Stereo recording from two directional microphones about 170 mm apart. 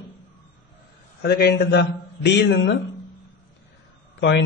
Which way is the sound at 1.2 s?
70° left (ahead or behind).